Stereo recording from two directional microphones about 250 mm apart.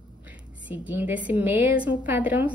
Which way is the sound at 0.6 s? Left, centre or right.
Centre.